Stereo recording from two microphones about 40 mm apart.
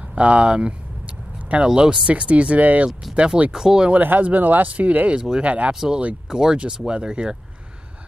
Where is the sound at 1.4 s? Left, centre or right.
Right.